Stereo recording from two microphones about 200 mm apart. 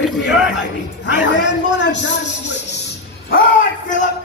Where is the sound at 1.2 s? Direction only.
60° left (ahead or behind).